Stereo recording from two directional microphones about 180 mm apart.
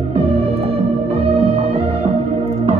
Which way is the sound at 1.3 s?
30° right (ahead or behind).